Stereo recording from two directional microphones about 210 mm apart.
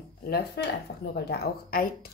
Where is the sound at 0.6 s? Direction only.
50° left (ahead or behind).